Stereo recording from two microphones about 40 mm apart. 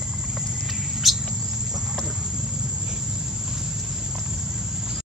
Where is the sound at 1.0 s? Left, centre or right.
Centre.